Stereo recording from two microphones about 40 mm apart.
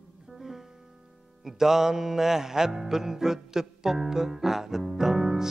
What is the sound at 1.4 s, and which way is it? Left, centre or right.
Music, centre.